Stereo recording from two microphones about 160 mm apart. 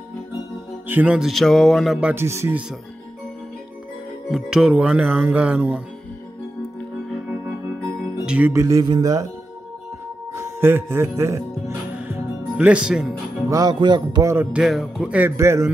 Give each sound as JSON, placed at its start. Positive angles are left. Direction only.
{"t": 0.8, "sound": "speech", "side_deg": -10}
{"t": 2.2, "sound": "music", "side_deg": -15}
{"t": 4.3, "sound": "music", "side_deg": -5}
{"t": 8.3, "sound": "speech", "side_deg": -10}
{"t": 10.3, "sound": "music", "side_deg": -15}
{"t": 13.5, "sound": "speech", "side_deg": -25}
{"t": 14.3, "sound": "music", "side_deg": -10}